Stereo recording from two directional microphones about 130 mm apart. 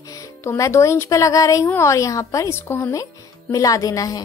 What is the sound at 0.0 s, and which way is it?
A woman's voice, 25° left (ahead or behind).